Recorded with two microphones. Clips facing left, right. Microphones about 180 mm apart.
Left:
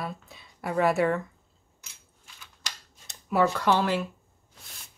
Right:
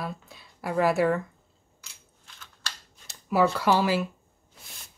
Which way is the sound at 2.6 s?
15° left (ahead or behind).